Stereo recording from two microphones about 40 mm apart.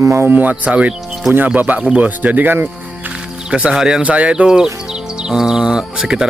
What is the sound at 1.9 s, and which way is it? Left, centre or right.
Speech, right.